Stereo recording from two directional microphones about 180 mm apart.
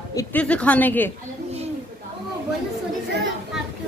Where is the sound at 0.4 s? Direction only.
5° left (ahead or behind).